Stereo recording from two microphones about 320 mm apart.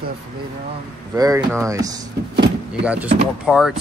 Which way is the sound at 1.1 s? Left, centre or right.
Centre.